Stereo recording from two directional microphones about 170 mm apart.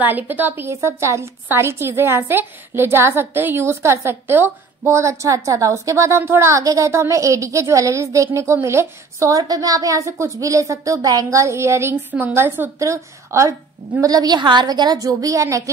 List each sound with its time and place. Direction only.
0.0 s a woman's voice: 10° right (ahead or behind)